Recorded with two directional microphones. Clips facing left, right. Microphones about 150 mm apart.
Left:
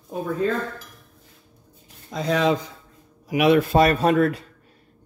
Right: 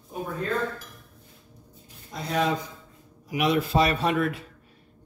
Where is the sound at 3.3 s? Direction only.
65° left (ahead or behind); by 4.4 s 40° left (ahead or behind).